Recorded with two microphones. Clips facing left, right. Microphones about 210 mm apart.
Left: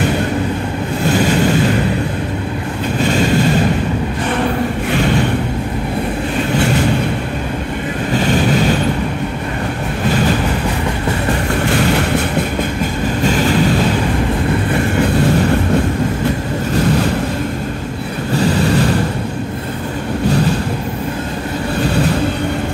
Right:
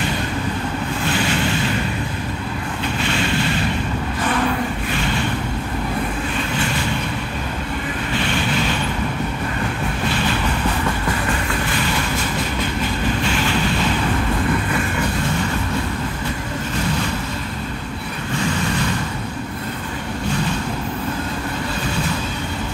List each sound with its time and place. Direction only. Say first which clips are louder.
1.0 s vehicle: left 9 dB; 40° left (ahead or behind)
3.0 s boat: left 9 dB; 40° left (ahead or behind)
8.1 s vehicle: left 9 dB; 40° left (ahead or behind)
13.2 s vehicle: left 7 dB; 40° left (ahead or behind)